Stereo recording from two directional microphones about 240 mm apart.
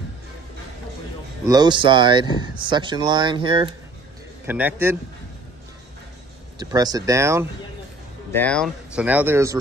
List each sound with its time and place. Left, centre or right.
1.4 s speech: centre
4.5 s speech: centre
6.6 s speech: centre
8.3 s speech: centre